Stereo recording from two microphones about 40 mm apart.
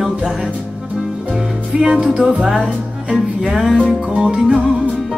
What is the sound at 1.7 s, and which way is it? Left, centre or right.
Music, right.